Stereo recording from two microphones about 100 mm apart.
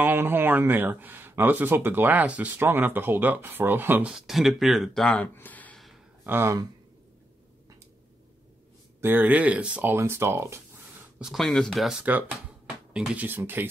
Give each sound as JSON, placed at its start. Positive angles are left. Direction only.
{"t": 0.0, "sound": "speech", "side_deg": -20}
{"t": 4.1, "sound": "speech", "side_deg": 0}
{"t": 5.3, "sound": "a sound", "side_deg": 20}
{"t": 6.2, "sound": "speech", "side_deg": -20}
{"t": 9.0, "sound": "speech", "side_deg": -20}
{"t": 9.9, "sound": "speech", "side_deg": -25}
{"t": 11.1, "sound": "speech", "side_deg": 0}
{"t": 12.0, "sound": "speech", "side_deg": -15}